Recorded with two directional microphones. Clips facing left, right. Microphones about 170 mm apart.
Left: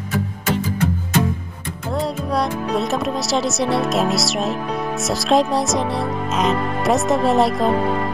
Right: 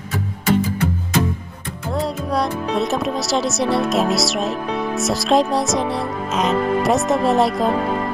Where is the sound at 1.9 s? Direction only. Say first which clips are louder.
Even; centre (ahead or behind).